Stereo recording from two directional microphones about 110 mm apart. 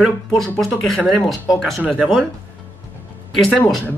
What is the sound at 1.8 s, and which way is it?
Speech, 15° right (ahead or behind).